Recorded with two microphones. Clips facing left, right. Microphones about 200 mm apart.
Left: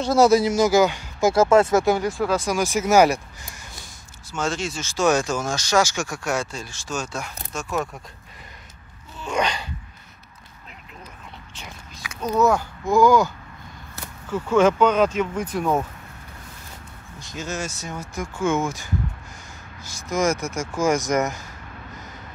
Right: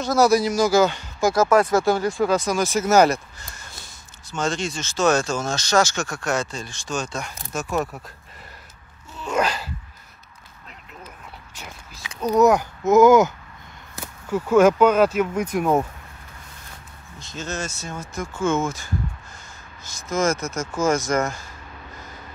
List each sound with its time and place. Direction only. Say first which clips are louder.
0.0 s a man's voice: left 1 dB; 25° left (ahead or behind)
1.2 s a man's voice: left 1 dB; 25° left (ahead or behind)
2.0 s speech: right 2 dB; 5° left (ahead or behind)
9.2 s speech: right 1 dB; 5° right (ahead or behind)
11.5 s biting: even; 5° right (ahead or behind)
12.2 s speech: right 3 dB; 15° right (ahead or behind)
14.3 s speech: right 2 dB; 10° right (ahead or behind)
17.2 s speech: even; 10° left (ahead or behind)